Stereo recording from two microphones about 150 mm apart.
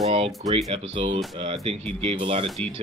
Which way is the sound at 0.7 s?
40° right (ahead or behind).